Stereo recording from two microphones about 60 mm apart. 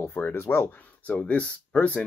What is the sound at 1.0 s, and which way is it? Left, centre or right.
Speech, left.